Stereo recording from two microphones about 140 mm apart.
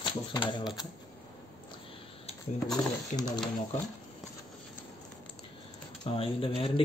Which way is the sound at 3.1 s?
55° left (ahead or behind).